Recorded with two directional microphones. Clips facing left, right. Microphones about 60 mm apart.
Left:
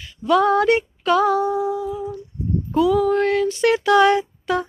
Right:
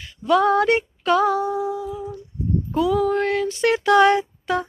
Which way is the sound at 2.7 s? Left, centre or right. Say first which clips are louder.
Left 3 dB; right.